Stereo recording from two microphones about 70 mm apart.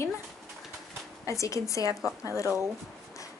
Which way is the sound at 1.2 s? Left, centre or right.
Left.